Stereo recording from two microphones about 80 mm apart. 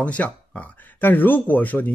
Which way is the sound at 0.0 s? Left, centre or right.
Centre.